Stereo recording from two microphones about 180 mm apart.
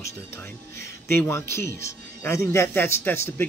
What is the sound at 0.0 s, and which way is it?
Speech, 15° left (ahead or behind).